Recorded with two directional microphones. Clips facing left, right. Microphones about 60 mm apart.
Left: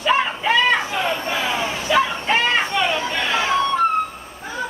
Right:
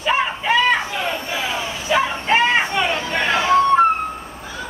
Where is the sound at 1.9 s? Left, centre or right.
Centre.